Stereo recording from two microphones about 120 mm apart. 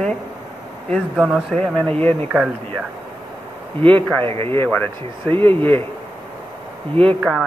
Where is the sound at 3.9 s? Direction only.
15° left (ahead or behind).